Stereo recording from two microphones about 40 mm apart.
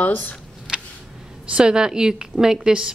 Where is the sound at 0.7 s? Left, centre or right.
Centre.